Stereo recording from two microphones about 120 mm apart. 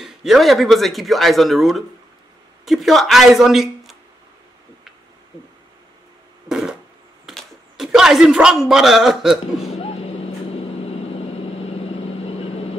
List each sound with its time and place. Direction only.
0.0 s speech: centre (ahead or behind)
6.5 s a sound: 5° right (ahead or behind)
7.2 s speech: 5° right (ahead or behind)
9.7 s vehicle: 55° left (ahead or behind)